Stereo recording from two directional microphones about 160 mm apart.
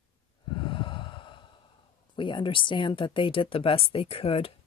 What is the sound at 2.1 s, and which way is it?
Speech, 30° left (ahead or behind).